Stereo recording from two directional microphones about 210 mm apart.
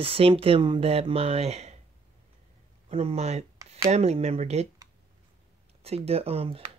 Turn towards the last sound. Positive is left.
turn(degrees=-25)  # may be behind; listen again after turning